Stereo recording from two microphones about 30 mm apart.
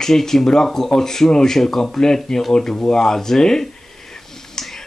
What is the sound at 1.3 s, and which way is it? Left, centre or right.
Speech, left.